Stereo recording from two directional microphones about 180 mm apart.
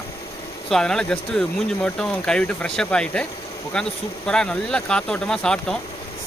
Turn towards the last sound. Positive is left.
turn(degrees=5)  # may be behind; listen again after turning